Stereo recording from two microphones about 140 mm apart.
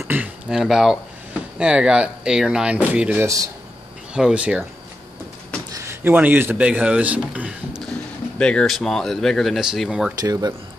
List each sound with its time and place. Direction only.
0.1 s a sound: 5° right (ahead or behind)
1.6 s speech: 5° right (ahead or behind)
4.1 s speech: 5° right (ahead or behind)
5.7 s speech: 20° right (ahead or behind)
8.4 s speech: 5° left (ahead or behind)
10.2 s speech: 25° right (ahead or behind)